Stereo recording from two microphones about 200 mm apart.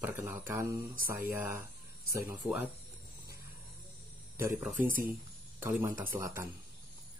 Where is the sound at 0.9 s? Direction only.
45° right (ahead or behind).